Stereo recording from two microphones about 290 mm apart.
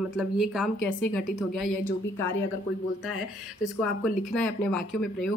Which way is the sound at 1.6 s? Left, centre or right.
Centre.